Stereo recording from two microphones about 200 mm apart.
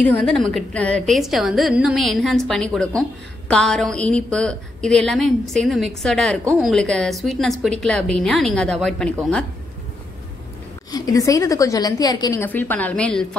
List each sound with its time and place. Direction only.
0.0 s a woman's voice: 5° left (ahead or behind)
10.9 s a woman's voice: 20° left (ahead or behind)